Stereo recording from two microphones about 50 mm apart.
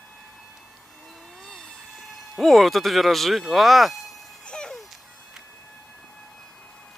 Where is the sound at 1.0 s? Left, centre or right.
Centre.